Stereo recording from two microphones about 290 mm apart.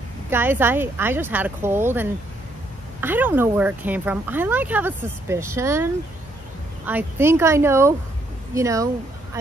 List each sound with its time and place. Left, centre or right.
0.3 s speech: centre
6.9 s speech: centre